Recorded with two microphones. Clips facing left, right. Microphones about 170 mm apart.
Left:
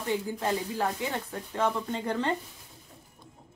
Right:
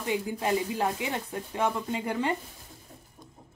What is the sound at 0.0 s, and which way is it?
Speech, 15° right (ahead or behind).